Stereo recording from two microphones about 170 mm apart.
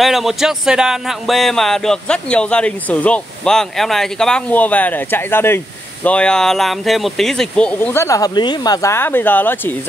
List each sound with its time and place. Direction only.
0.0 s speech: centre (ahead or behind)